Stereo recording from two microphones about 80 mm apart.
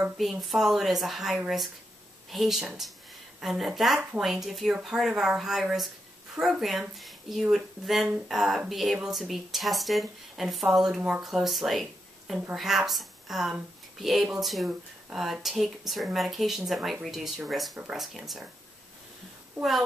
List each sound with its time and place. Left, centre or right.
0.2 s speech: centre